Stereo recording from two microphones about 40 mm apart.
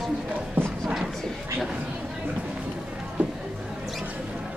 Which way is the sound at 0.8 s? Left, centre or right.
Centre.